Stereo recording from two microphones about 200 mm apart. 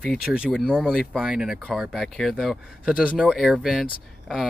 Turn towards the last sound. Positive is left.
turn(degrees=0)  # may be behind; listen again after turning